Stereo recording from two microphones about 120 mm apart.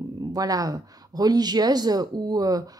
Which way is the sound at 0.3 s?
30° right (ahead or behind).